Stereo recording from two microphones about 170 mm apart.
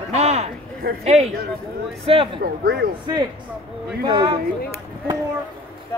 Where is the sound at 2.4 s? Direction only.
65° right (ahead or behind).